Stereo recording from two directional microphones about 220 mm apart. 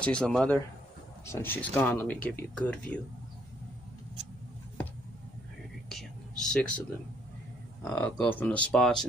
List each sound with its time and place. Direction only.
0.0 s a man's voice: 5° left (ahead or behind)
5.9 s whispering: centre (ahead or behind)
7.8 s a man's voice: 5° left (ahead or behind)